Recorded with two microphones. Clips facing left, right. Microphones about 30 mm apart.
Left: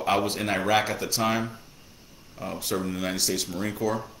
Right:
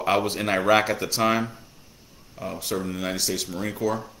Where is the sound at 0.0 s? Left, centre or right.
Centre.